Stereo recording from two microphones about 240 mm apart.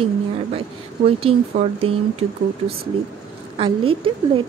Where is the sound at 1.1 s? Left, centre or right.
Right.